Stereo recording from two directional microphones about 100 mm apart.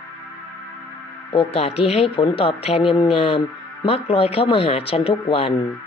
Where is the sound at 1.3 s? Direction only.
70° left (ahead or behind).